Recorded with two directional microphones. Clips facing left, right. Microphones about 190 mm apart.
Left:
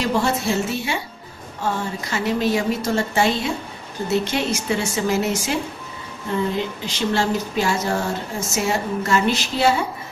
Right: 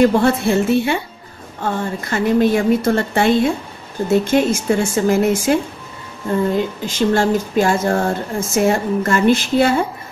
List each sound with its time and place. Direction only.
0.0 s a woman's voice: 55° right (ahead or behind)